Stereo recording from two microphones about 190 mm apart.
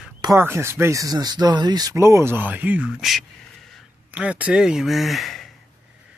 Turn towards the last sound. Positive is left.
turn(degrees=0)  # may be behind; listen again after turning